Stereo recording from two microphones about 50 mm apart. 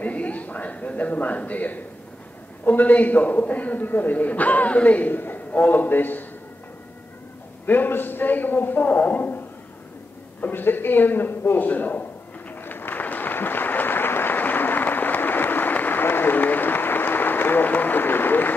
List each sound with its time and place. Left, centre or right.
0.0 s a man's voice: left
7.6 s a man's voice: left
10.5 s a woman's voice: left
12.4 s applause: left